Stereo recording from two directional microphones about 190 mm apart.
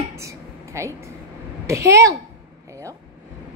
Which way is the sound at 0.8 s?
15° right (ahead or behind).